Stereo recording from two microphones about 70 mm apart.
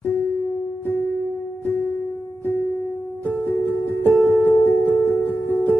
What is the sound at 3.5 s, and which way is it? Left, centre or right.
Music, left.